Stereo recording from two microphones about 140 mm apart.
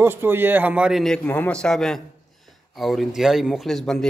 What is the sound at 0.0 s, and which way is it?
A man's voice, 15° right (ahead or behind).